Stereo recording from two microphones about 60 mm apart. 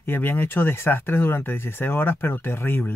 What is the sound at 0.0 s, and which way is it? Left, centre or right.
Speech, left.